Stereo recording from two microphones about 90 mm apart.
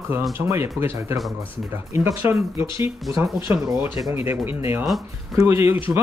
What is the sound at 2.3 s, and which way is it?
Speech, 30° right (ahead or behind).